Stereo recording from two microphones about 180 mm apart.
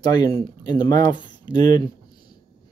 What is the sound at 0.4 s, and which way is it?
Speech, 20° left (ahead or behind).